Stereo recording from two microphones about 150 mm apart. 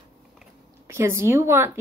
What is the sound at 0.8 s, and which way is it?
Speech, 15° right (ahead or behind).